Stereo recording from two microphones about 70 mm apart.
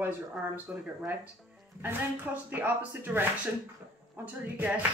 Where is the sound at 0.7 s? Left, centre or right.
Right.